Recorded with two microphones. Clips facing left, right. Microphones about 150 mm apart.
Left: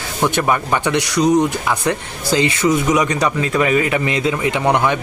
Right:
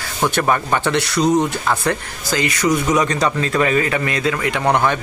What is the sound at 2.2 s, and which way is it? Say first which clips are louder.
Speech: left 3 dB; 25° left (ahead or behind).